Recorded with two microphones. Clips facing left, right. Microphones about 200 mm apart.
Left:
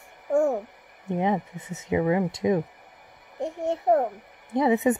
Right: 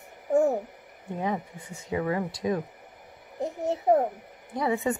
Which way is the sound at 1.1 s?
25° left (ahead or behind).